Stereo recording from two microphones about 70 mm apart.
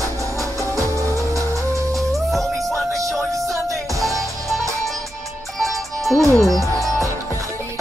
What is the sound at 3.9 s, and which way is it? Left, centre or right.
Music, right.